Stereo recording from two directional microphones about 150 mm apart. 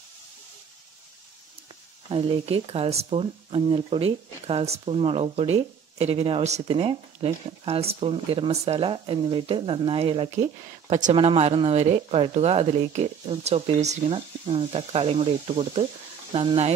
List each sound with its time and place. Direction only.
2.0 s speech: 35° right (ahead or behind)
10.3 s speech: 55° right (ahead or behind)